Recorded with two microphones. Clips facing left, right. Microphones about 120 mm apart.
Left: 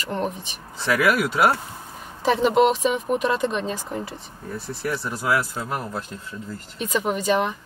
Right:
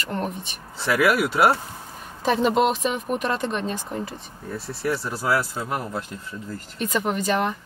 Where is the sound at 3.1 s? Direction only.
Centre (ahead or behind).